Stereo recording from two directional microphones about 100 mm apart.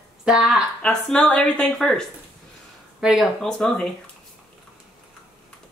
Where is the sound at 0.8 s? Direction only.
10° left (ahead or behind).